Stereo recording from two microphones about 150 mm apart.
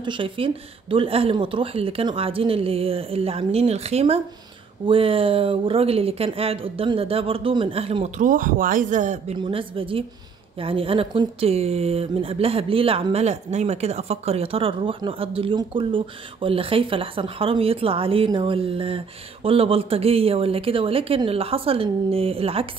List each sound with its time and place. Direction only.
0.0 s speech: 35° right (ahead or behind)
8.2 s speech: 65° right (ahead or behind)
9.4 s speech: 35° right (ahead or behind)